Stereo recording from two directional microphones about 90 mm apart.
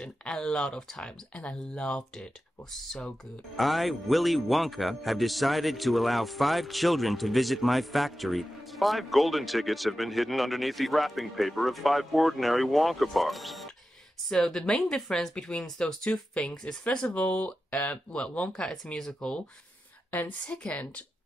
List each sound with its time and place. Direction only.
0.0 s speech: 10° left (ahead or behind)